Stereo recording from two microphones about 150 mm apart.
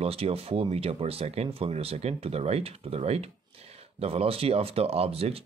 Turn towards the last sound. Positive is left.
turn(degrees=-40)  # may be behind; listen again after turning